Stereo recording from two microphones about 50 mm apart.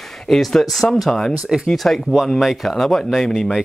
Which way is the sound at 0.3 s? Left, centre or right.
Centre.